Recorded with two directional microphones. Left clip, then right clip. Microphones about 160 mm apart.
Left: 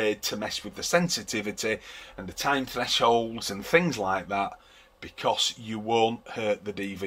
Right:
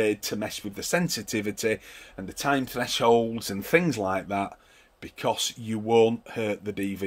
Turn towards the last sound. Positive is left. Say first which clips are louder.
# right 1 dB
turn(degrees=-90)